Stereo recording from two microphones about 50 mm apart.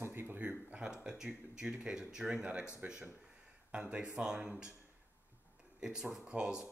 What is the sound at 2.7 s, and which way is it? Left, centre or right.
Speech, centre.